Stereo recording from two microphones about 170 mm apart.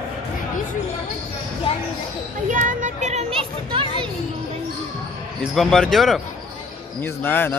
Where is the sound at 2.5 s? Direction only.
50° right (ahead or behind); by 4.1 s 35° right (ahead or behind).